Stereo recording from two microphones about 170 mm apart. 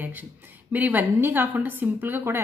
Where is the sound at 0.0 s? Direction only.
10° right (ahead or behind).